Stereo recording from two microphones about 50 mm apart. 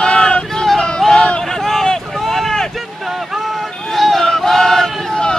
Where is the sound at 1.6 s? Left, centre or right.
Centre.